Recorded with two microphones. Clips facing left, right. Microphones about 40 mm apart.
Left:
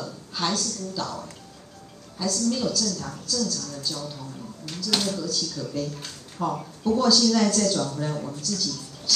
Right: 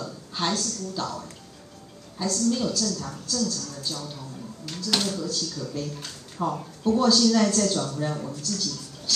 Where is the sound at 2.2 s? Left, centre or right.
Right.